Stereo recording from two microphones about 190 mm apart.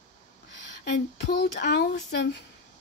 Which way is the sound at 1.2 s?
60° left (ahead or behind).